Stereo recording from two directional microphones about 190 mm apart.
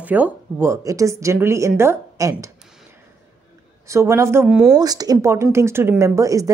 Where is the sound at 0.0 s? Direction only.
10° right (ahead or behind).